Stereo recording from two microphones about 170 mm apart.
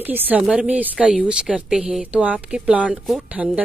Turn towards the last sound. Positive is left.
turn(degrees=-5)  # may be behind; listen again after turning